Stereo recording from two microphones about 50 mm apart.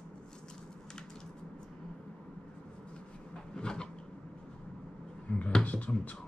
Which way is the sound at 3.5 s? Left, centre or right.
Centre.